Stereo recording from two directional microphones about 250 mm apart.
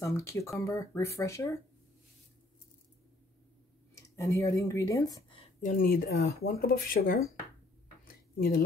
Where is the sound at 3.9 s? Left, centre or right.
Centre.